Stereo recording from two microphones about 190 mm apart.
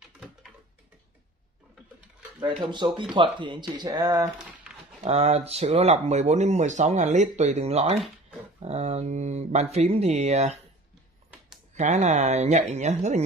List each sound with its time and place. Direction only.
2.4 s speech: 25° right (ahead or behind)
5.0 s speech: 35° right (ahead or behind)
11.7 s speech: 40° right (ahead or behind)